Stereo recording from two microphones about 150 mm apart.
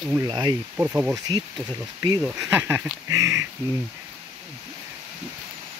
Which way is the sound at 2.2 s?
10° right (ahead or behind).